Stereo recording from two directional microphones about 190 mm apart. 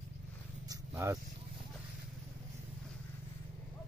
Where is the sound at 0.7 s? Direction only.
15° right (ahead or behind).